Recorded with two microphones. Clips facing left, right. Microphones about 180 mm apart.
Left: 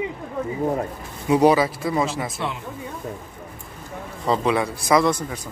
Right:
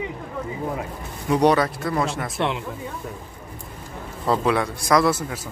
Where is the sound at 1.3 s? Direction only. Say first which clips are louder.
Left 2 dB; 5° left (ahead or behind).